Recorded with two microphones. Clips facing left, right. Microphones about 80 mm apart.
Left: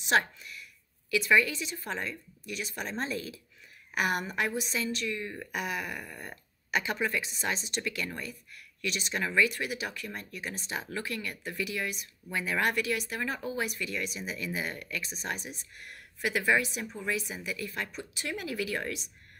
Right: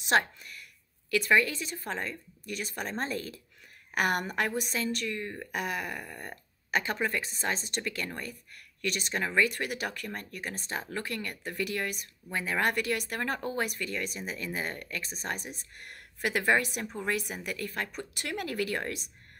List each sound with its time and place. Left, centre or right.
0.4 s a sound: right
1.1 s speech: right
12.3 s speech: right